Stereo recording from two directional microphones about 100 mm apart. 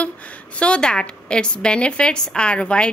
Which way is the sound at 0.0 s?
15° left (ahead or behind).